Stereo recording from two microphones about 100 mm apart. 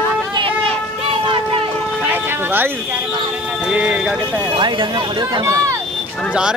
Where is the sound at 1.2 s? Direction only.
65° right (ahead or behind).